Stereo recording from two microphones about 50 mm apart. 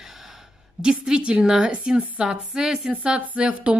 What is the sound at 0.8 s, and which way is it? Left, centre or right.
Speech, centre.